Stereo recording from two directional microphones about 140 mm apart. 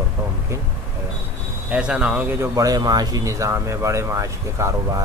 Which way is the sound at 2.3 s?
25° right (ahead or behind).